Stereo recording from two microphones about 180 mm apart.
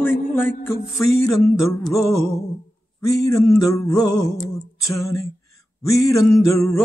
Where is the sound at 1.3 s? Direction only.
Centre (ahead or behind).